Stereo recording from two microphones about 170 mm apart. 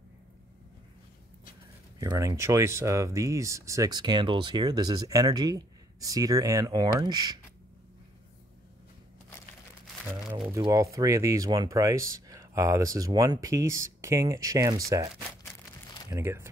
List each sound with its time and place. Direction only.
2.0 s speech: 20° right (ahead or behind)
10.7 s speech: 20° right (ahead or behind)
16.1 s speech: 15° right (ahead or behind)